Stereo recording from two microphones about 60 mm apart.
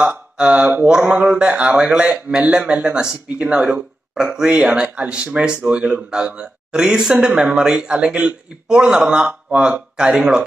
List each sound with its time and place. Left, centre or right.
0.1 s a man's voice: centre